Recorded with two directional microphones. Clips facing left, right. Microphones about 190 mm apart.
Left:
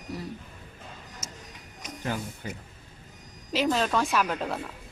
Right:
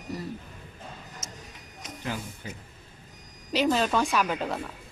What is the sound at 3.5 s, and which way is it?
Speech, centre (ahead or behind).